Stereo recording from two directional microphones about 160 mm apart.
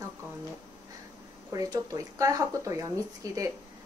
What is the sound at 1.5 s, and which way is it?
Speech, 20° right (ahead or behind).